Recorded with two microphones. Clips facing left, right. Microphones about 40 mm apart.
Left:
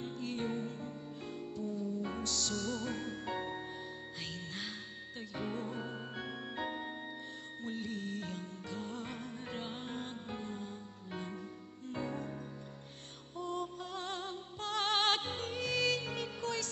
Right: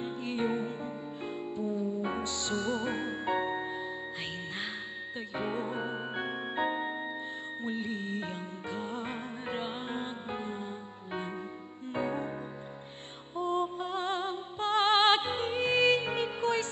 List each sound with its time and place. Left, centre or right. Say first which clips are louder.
0.0 s music: right 6 dB; right
5.3 s music: right 6 dB; right
13.4 s music: right 8 dB; right